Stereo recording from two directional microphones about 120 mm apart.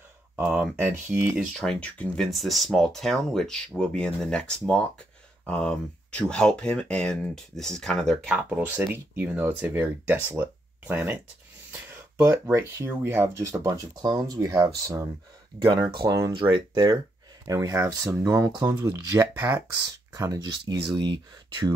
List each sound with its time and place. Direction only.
0.4 s speech: 5° right (ahead or behind)
0.7 s speech: 20° right (ahead or behind)
1.3 s speech: 5° left (ahead or behind)
8.3 s speech: 15° right (ahead or behind)
12.3 s speech: 15° right (ahead or behind); by 15.9 s 40° right (ahead or behind)
16.0 s speech: 25° right (ahead or behind)